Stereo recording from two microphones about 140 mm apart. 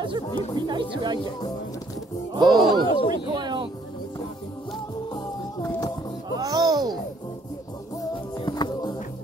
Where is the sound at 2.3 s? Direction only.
30° right (ahead or behind).